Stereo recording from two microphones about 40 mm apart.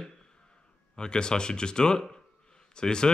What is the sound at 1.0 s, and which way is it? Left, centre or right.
Speech, left.